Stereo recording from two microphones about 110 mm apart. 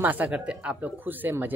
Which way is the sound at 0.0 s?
15° right (ahead or behind).